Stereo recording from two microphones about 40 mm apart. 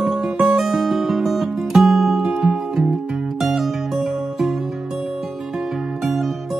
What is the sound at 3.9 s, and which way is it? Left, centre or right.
Music, centre.